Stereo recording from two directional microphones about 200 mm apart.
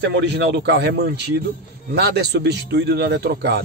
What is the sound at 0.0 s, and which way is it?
Speech, 60° right (ahead or behind).